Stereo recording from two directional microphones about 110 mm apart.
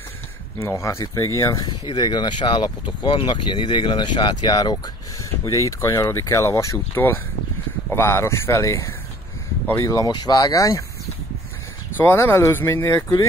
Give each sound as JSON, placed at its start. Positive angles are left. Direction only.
{"t": 0.6, "sound": "speech", "side_deg": 25}
{"t": 1.4, "sound": "speech", "side_deg": 40}
{"t": 12.0, "sound": "speech", "side_deg": 20}